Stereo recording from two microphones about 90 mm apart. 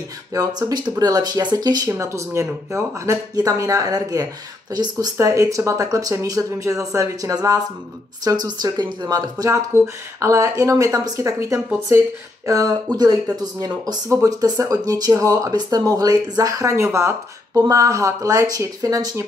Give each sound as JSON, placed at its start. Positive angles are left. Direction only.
{"t": 0.3, "sound": "speech", "side_deg": -45}
{"t": 1.9, "sound": "speech", "side_deg": -35}
{"t": 5.1, "sound": "speech", "side_deg": -30}